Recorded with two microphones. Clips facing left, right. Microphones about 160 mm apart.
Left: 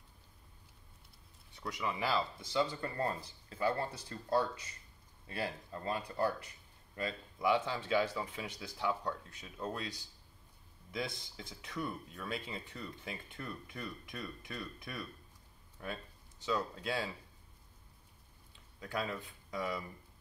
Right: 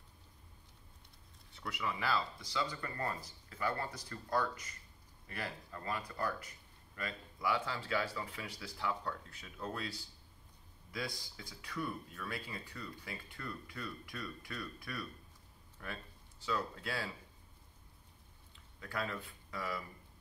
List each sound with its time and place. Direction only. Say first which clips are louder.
1.5 s speech: left 2 dB; 20° left (ahead or behind)
18.8 s speech: left 2 dB; 20° left (ahead or behind)